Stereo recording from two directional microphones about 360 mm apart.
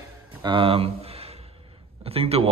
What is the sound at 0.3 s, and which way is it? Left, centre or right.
Speech, centre.